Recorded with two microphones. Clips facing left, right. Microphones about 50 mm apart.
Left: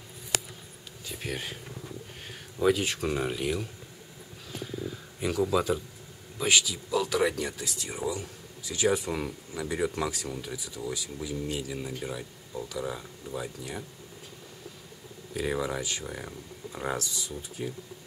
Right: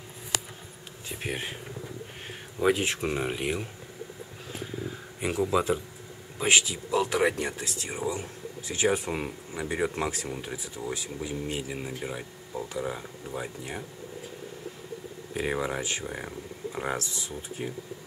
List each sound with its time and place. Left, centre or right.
1.0 s speech: right
2.6 s speech: right
4.5 s a sound: right
5.5 s speech: right
15.3 s speech: right